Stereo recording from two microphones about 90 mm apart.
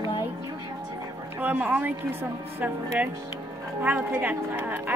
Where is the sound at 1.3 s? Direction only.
20° right (ahead or behind).